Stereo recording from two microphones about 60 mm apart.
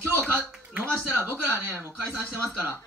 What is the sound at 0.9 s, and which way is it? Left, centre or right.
A man's voice, right.